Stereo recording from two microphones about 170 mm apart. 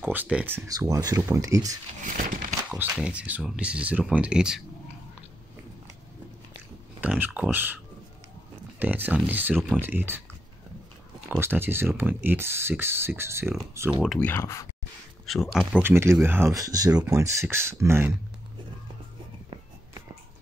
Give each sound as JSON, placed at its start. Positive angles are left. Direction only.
{"t": 0.0, "sound": "speech", "side_deg": -10}
{"t": 0.7, "sound": "speech", "side_deg": -20}
{"t": 2.1, "sound": "a sound", "side_deg": -55}
{"t": 2.7, "sound": "speech", "side_deg": -5}
{"t": 7.0, "sound": "speech", "side_deg": -10}
{"t": 11.2, "sound": "speech", "side_deg": -10}
{"t": 14.2, "sound": "speech", "side_deg": 15}
{"t": 15.3, "sound": "speech", "side_deg": 0}
{"t": 15.7, "sound": "speech", "side_deg": -15}